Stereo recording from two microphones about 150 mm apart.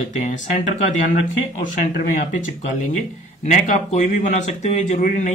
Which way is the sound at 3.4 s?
55° left (ahead or behind).